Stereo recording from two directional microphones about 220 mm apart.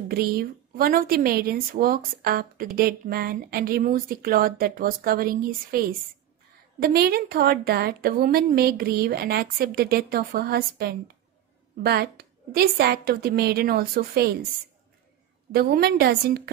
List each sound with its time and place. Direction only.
0.1 s a woman's voice: 40° right (ahead or behind)
15.5 s speech: 45° right (ahead or behind)